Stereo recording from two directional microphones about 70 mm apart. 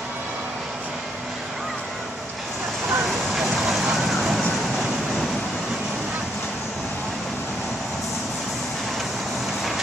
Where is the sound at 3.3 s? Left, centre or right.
Centre.